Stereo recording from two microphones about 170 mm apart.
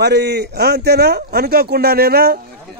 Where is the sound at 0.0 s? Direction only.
80° right.